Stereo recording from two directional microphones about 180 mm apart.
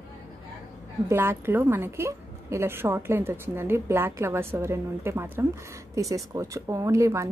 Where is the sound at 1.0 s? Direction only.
10° right (ahead or behind).